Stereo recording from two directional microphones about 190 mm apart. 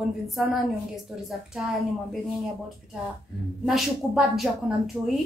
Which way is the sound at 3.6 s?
Centre (ahead or behind).